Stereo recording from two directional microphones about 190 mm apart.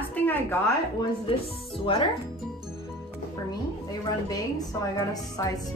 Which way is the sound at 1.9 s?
25° left (ahead or behind).